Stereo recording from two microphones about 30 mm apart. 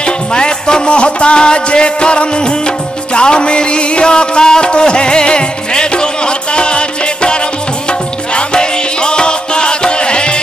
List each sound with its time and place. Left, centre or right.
0.0 s music: left
8.5 s music: left